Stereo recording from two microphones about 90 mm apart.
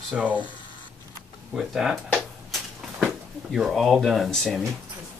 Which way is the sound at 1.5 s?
5° right (ahead or behind).